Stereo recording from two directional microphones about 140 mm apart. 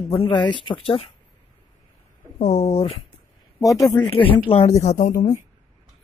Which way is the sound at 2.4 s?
50° left (ahead or behind).